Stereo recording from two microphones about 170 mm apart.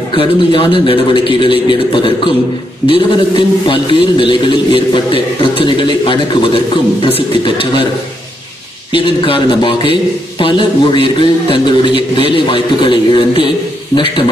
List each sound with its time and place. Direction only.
0.1 s a man's voice: 30° left (ahead or behind)
8.9 s a man's voice: 30° left (ahead or behind)